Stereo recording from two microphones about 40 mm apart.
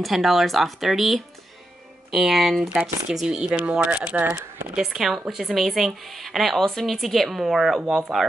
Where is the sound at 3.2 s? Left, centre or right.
Right.